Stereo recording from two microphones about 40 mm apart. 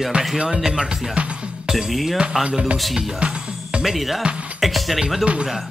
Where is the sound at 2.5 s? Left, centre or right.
Right.